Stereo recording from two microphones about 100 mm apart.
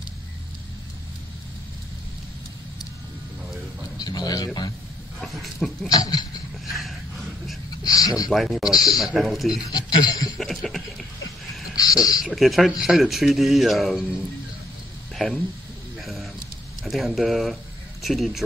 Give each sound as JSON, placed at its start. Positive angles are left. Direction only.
{"t": 4.0, "sound": "speech", "side_deg": 40}
{"t": 5.2, "sound": "speech", "side_deg": 0}
{"t": 5.9, "sound": "speech", "side_deg": 40}
{"t": 6.6, "sound": "a sound", "side_deg": 0}
{"t": 7.8, "sound": "speech", "side_deg": 40}
{"t": 8.3, "sound": "speech", "side_deg": 0}
{"t": 9.7, "sound": "speech", "side_deg": 40}
{"t": 10.3, "sound": "speech", "side_deg": 0}
{"t": 11.7, "sound": "a sound", "side_deg": 40}
{"t": 12.2, "sound": "speech", "side_deg": 0}
{"t": 16.0, "sound": "a sound", "side_deg": 0}
{"t": 16.8, "sound": "speech", "side_deg": 0}